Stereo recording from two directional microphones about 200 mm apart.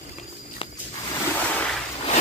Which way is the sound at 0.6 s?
25° left (ahead or behind).